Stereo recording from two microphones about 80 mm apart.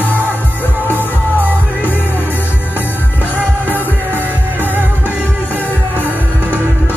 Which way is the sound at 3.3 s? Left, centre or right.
Right.